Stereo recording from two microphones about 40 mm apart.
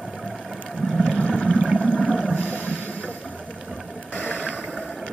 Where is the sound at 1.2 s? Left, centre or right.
Right.